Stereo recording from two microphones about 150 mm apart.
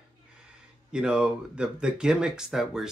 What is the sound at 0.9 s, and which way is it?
Speech, 5° right (ahead or behind).